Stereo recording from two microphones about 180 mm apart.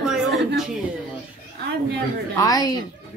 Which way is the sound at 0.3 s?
70° right (ahead or behind).